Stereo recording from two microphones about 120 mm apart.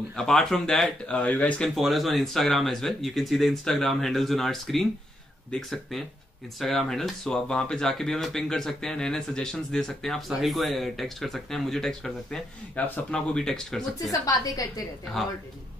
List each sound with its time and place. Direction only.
0.1 s speech: 5° left (ahead or behind)
1.8 s speech: centre (ahead or behind)
14.2 s a woman's voice: 30° left (ahead or behind)